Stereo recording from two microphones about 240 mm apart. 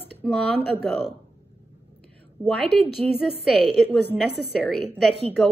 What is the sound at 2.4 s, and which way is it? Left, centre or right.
Speech, right.